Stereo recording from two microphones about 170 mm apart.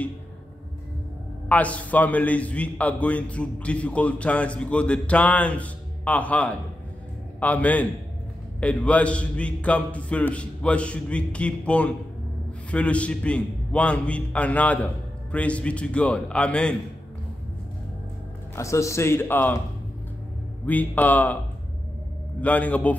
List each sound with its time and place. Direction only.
1.5 s a man's voice: 10° left (ahead or behind)
18.6 s a man's voice: 15° left (ahead or behind)
20.6 s a man's voice: 10° left (ahead or behind)
22.4 s a man's voice: 10° left (ahead or behind)